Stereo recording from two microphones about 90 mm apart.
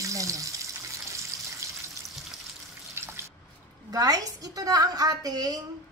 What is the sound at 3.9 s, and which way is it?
A woman's voice, 40° right (ahead or behind).